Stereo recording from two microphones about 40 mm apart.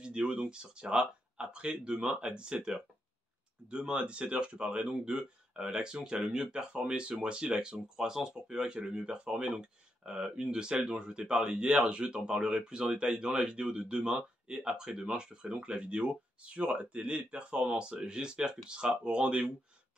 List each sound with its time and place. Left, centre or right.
0.0 s speech: right